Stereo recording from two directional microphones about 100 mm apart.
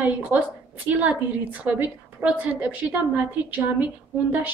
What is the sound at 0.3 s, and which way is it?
A woman's voice, 15° right (ahead or behind).